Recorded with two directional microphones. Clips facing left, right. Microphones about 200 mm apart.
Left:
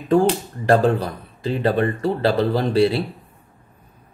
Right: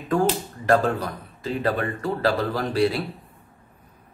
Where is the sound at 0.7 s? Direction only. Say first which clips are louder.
Left 4 dB; 30° left (ahead or behind).